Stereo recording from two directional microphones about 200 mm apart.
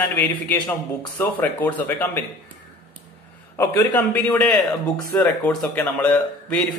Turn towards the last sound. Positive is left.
turn(degrees=5)  # may be behind; listen again after turning